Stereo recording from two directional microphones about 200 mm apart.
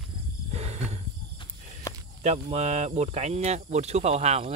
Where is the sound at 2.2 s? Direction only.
35° right (ahead or behind).